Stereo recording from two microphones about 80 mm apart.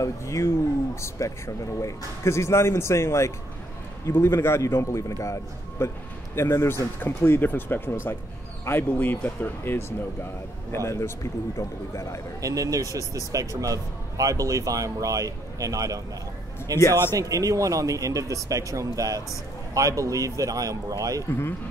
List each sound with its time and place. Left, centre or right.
0.0 s speech: left
12.4 s speech: right
16.7 s speech: left
17.1 s speech: right